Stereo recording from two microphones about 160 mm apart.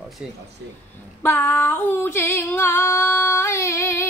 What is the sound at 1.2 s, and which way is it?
Female singing, 15° left (ahead or behind).